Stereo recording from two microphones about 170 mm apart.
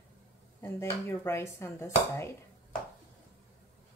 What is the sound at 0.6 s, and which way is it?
Speech, 15° left (ahead or behind).